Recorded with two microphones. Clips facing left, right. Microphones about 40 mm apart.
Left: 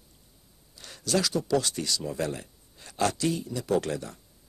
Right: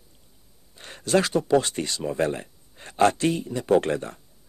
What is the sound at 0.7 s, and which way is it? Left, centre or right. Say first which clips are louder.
Speech: right 6 dB; right.